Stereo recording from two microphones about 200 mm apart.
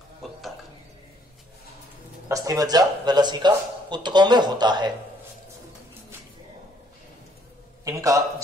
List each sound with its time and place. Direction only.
0.2 s a sound: centre (ahead or behind)
2.2 s a man's voice: 15° right (ahead or behind)
7.8 s a man's voice: 15° right (ahead or behind)